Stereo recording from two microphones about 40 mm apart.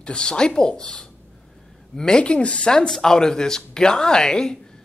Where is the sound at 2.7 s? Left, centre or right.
Centre.